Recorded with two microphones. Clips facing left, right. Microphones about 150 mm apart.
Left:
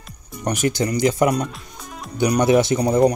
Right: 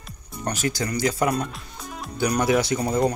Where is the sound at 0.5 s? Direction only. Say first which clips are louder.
Left 5 dB; 20° left (ahead or behind).